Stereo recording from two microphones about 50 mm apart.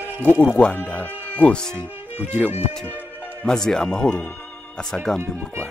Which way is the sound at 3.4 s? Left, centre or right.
Centre.